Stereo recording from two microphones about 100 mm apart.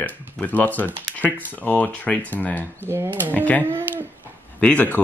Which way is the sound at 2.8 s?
20° right (ahead or behind).